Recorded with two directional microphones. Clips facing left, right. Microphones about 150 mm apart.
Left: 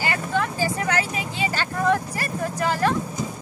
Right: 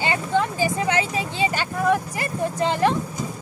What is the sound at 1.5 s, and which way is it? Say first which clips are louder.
Speech: left 1 dB; 15° right (ahead or behind).